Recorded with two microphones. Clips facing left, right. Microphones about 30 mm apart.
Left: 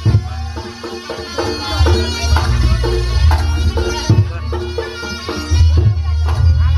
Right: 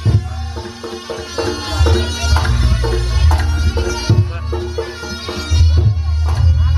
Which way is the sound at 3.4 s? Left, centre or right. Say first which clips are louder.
Even; left.